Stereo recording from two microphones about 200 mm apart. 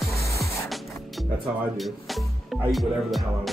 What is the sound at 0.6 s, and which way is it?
Music, centre (ahead or behind).